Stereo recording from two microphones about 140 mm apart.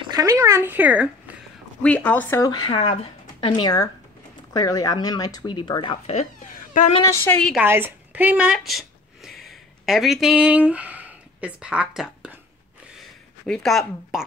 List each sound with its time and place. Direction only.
0.0 s speech: 25° right (ahead or behind); by 1.3 s 10° right (ahead or behind)
1.8 s a woman's voice: 10° left (ahead or behind)
2.7 s speech: 45° left (ahead or behind)
6.0 s speech: 60° left (ahead or behind)
7.2 s a woman's voice: 10° left (ahead or behind)
7.6 s speech: 15° right (ahead or behind)
13.5 s speech: centre (ahead or behind)